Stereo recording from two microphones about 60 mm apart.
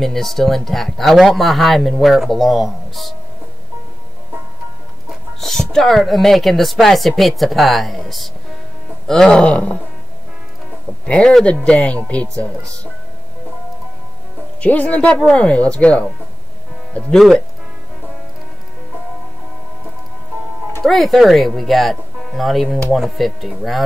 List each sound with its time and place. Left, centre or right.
0.0 s speech: centre
5.4 s speech: centre
11.1 s speech: centre
14.6 s speech: left
17.1 s speech: centre
20.8 s speech: centre